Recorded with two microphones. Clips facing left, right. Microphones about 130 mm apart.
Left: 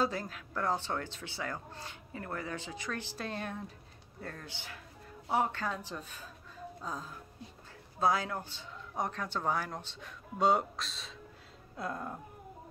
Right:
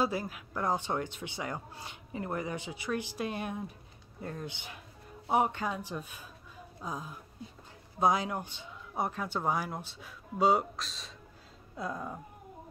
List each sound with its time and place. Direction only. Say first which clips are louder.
0.0 s speech: right 2 dB; 10° right (ahead or behind)
11.7 s music: right 1 dB; centre (ahead or behind)